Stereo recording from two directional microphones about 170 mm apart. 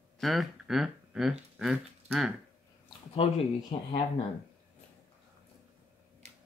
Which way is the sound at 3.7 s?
35° left (ahead or behind).